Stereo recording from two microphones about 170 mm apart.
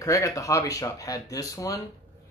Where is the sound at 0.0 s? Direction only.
20° left (ahead or behind).